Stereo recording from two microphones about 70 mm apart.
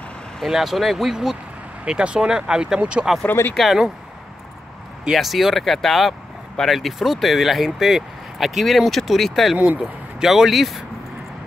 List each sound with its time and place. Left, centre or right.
0.4 s speech: centre
3.3 s speech: left
3.5 s speech: centre
5.1 s speech: centre